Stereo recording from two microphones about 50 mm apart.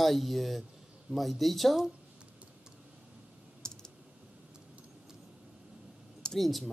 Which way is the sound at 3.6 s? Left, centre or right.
Centre.